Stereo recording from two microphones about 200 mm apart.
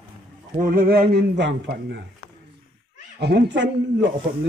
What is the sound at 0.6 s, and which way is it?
A man's voice, 45° right (ahead or behind).